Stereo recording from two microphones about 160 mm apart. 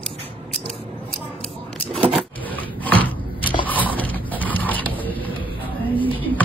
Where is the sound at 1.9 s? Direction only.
35° right (ahead or behind).